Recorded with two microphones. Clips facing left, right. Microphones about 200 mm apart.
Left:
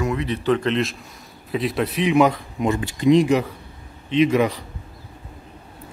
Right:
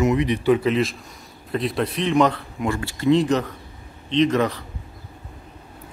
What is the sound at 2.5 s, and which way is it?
Speech, 20° left (ahead or behind).